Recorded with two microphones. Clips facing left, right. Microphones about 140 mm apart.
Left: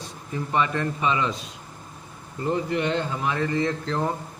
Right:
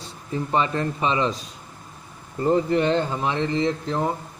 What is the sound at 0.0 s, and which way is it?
A man's voice, 30° right (ahead or behind).